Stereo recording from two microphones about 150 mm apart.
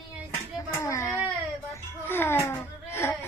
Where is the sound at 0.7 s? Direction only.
20° left (ahead or behind).